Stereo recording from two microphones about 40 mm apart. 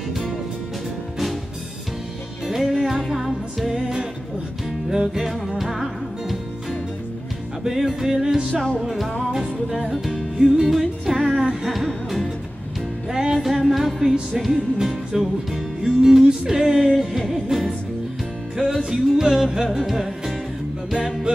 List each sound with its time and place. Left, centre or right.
2.4 s music: centre
3.8 s music: centre
5.6 s music: centre
8.7 s music: centre
13.1 s music: centre
13.5 s music: centre
18.8 s music: centre
21.0 s music: centre